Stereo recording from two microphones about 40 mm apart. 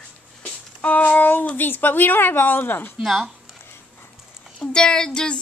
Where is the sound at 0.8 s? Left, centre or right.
Left.